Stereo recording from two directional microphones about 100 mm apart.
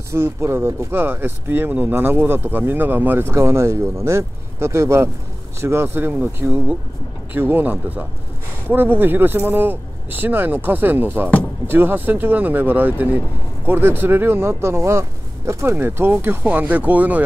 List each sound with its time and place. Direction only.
0.1 s speech: 25° right (ahead or behind)